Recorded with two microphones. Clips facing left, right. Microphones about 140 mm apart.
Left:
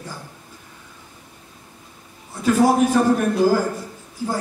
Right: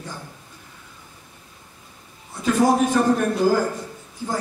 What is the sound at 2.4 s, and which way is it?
A man's voice, 5° left (ahead or behind).